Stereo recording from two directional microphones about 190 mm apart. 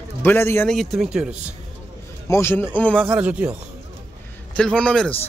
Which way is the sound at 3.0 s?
10° right (ahead or behind).